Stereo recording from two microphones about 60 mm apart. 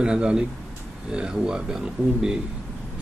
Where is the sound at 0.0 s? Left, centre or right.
Centre.